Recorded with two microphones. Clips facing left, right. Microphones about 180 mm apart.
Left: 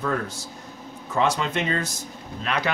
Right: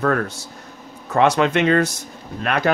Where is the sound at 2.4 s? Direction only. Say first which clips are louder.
Right 6 dB; 55° right (ahead or behind).